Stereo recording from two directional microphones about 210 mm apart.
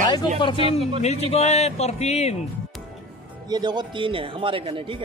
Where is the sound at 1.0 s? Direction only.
30° left (ahead or behind).